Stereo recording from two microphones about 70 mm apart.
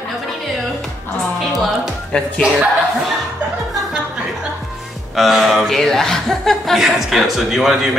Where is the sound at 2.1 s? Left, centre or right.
Centre.